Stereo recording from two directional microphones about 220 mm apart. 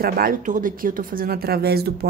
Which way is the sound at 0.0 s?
40° right (ahead or behind).